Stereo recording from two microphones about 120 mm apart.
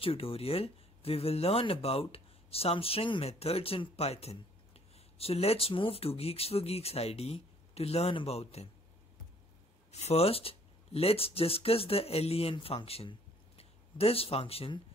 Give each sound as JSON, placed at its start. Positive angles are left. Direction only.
{"t": 0.0, "sound": "speech", "side_deg": 50}
{"t": 9.8, "sound": "speech", "side_deg": 65}